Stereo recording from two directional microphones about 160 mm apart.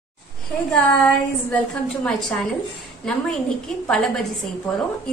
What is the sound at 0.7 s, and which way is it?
A woman's voice, centre (ahead or behind).